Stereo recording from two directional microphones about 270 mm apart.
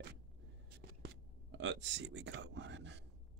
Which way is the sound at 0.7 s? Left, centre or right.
Right.